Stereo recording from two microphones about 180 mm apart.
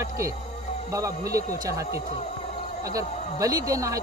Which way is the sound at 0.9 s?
20° right (ahead or behind).